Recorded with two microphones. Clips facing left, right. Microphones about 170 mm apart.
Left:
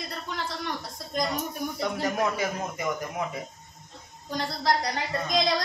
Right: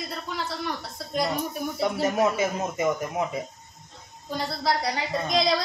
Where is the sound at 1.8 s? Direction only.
25° right (ahead or behind).